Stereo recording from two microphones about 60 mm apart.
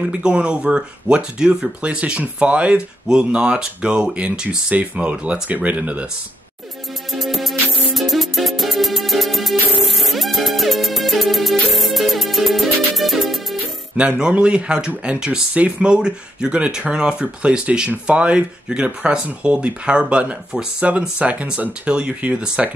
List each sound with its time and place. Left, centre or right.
0.0 s speech: centre
7.1 s music: centre
13.9 s speech: centre